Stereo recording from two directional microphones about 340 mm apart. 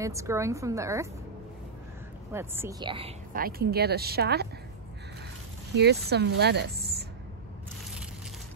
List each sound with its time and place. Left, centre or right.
0.0 s a woman's voice: centre
2.3 s a woman's voice: centre
3.3 s speech: right
6.0 s speech: right